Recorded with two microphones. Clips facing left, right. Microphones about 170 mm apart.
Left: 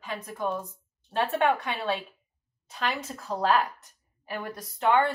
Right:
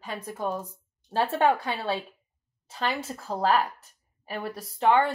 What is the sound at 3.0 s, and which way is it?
A woman's voice, 30° right (ahead or behind).